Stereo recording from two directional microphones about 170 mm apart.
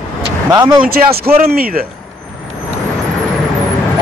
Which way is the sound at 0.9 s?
65° right (ahead or behind).